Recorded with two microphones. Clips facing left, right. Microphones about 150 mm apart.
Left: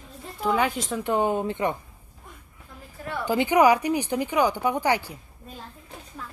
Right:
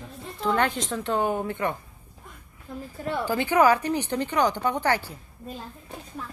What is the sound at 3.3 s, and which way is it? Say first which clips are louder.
Speech: left 2 dB; 15° left (ahead or behind).